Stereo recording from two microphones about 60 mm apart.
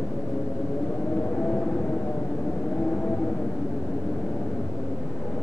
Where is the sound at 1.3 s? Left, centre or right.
Left.